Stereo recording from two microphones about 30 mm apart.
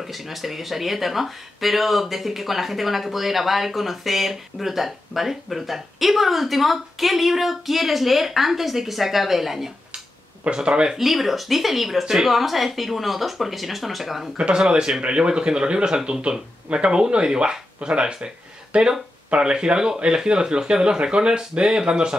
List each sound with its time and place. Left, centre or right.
0.0 s speech: centre
10.5 s speech: right
10.9 s speech: centre
12.0 s speech: centre
12.3 s speech: centre
15.0 s speech: right
17.7 s speech: right